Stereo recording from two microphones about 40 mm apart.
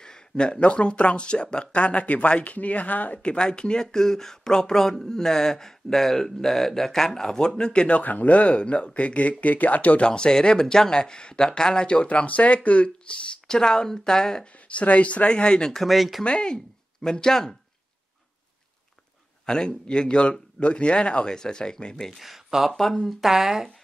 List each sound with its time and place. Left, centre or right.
0.0 s a sound: centre
0.6 s speech: left
3.2 s speech: left
8.0 s speech: left
10.0 s speech: left
14.7 s speech: left
15.8 s speech: centre
16.3 s speech: left
19.4 s speech: centre
22.2 s speech: centre
22.7 s speech: centre
23.2 s speech: centre